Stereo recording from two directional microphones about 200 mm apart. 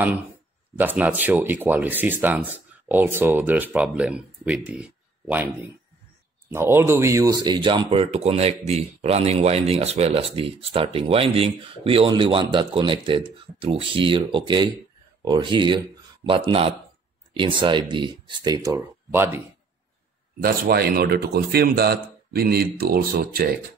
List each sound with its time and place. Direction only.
0.7 s speech: 10° right (ahead or behind)
20.4 s speech: 50° right (ahead or behind)